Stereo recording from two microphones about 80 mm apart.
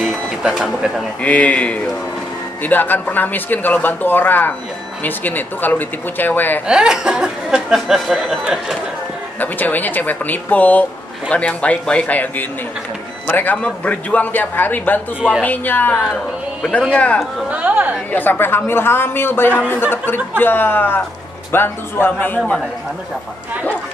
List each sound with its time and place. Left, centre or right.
0.0 s printer: centre
1.2 s a man's voice: centre
6.7 s speech: centre
9.4 s speech: left
16.6 s speech: centre
16.9 s a man's voice: centre
17.5 s speech: centre
18.1 s speech: left